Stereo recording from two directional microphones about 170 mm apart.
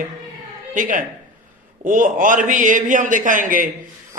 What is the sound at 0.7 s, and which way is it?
A man's voice, 50° right (ahead or behind).